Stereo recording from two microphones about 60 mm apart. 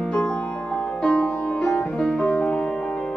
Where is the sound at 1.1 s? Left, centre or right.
Centre.